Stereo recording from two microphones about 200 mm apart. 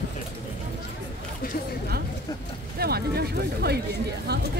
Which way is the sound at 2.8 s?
50° right (ahead or behind).